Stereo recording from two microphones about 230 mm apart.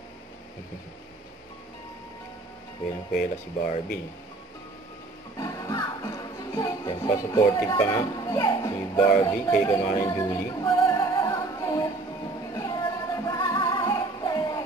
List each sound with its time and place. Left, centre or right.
5.4 s speech: centre
9.2 s music: centre